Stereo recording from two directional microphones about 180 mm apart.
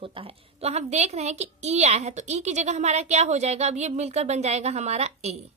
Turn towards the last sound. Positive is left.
turn(degrees=-35)  # may be behind; listen again after turning